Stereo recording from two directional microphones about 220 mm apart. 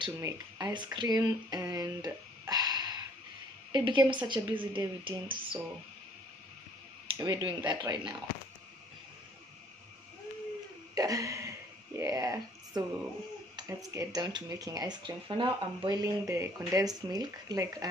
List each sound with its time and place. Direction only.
0.0 s a sound: 15° right (ahead or behind)
3.7 s speech: 20° right (ahead or behind)
7.1 s speech: 20° right (ahead or behind)
11.0 s cough: 15° right (ahead or behind)
12.0 s a sound: 15° right (ahead or behind)
13.6 s speech: 15° right (ahead or behind)